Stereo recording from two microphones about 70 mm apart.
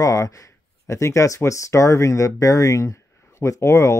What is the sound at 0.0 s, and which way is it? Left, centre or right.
Speech, left.